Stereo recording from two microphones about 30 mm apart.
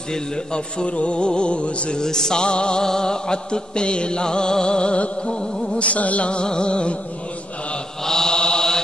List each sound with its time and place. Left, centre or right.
0.1 s music: left
0.8 s music: left
2.0 s music: left
2.8 s music: left
5.8 s music: left
6.4 s music: left
8.0 s mantra: centre